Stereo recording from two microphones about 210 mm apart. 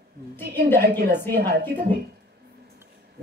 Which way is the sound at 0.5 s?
45° right (ahead or behind).